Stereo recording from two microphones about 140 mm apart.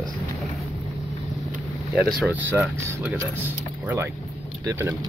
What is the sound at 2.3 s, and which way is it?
Speech, 15° right (ahead or behind).